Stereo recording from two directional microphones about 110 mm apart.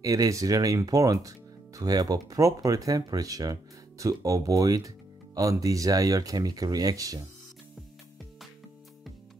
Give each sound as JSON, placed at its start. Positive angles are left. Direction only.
{"t": 0.0, "sound": "speech", "side_deg": -30}